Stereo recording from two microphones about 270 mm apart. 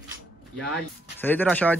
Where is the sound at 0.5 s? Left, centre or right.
Centre.